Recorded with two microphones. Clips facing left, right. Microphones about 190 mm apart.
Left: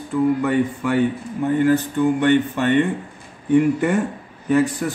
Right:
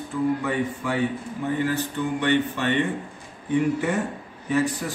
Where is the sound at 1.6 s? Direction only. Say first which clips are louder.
Left 11 dB; 50° left (ahead or behind).